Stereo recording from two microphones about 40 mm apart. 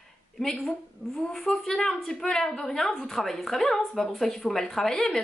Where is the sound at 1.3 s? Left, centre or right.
Centre.